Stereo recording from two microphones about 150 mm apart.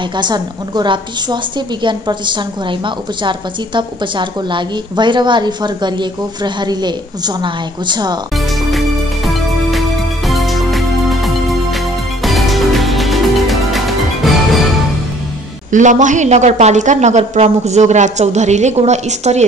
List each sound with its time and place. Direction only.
0.1 s a woman's voice: 30° right (ahead or behind)
8.6 s music: centre (ahead or behind)
15.7 s speech: 55° right (ahead or behind)